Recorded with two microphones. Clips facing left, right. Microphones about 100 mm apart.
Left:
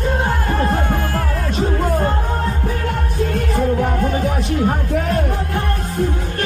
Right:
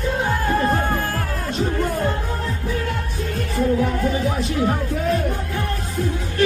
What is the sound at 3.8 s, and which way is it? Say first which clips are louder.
Music: left 2 dB; 55° left (ahead or behind).